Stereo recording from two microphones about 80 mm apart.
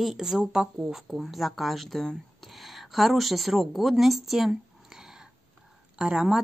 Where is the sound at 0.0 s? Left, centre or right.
Centre.